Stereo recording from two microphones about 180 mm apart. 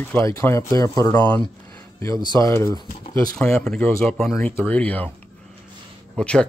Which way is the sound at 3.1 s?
5° left (ahead or behind).